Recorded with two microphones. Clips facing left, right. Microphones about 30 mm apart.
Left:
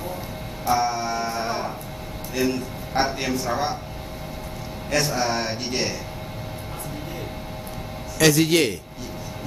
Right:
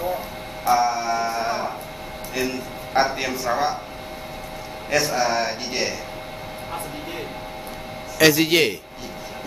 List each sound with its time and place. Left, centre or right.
0.7 s music: centre
2.3 s a man's voice: centre
4.9 s a man's voice: centre
8.2 s a man's voice: centre